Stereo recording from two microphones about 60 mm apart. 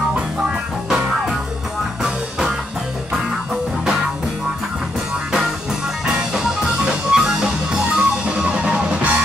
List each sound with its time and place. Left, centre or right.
2.0 s music: centre
6.1 s music: centre